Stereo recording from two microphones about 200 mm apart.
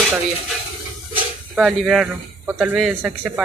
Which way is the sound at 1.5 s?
Centre (ahead or behind).